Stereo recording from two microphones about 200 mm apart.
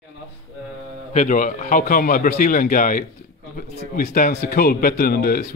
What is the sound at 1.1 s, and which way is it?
A man's voice, 40° left (ahead or behind).